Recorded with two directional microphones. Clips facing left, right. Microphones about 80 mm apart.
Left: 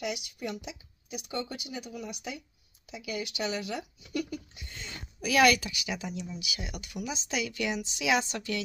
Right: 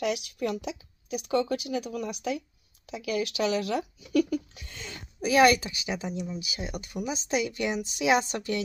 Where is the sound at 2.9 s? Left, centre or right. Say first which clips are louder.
Right 6 dB; right.